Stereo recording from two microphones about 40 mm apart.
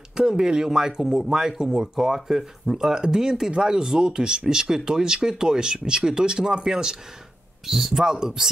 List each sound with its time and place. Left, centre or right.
0.1 s speech: centre